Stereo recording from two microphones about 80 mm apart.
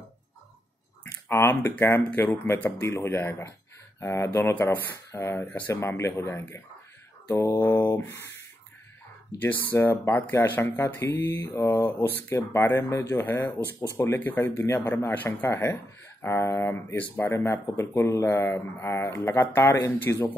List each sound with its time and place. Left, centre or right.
1.3 s speech: left
7.2 s mantra: left
7.8 s speech: left
9.4 s speech: left
9.8 s speech: left
11.3 s speech: left
12.3 s speech: left
17.2 s speech: left